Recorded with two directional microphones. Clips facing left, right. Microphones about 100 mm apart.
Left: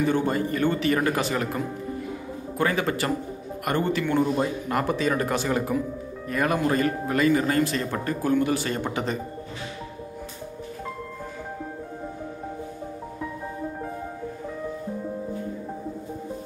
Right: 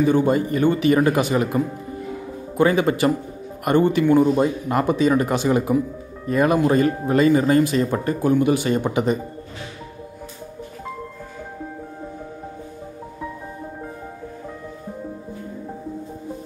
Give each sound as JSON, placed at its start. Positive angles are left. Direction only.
{"t": 0.1, "sound": "speech", "side_deg": -15}